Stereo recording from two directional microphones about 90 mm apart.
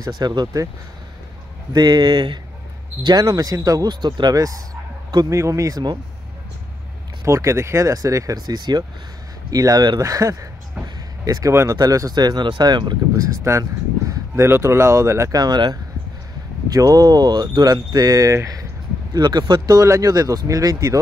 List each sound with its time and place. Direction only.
0.1 s speech: 50° right (ahead or behind)
1.8 s speech: 55° right (ahead or behind)
3.9 s speech: 55° right (ahead or behind)
7.2 s speech: 35° right (ahead or behind)
11.5 s speech: 30° right (ahead or behind)
11.8 s speech: 45° right (ahead or behind)
13.1 s speech: 40° right (ahead or behind)
15.3 s speech: 50° right (ahead or behind)
19.1 s speech: 50° right (ahead or behind)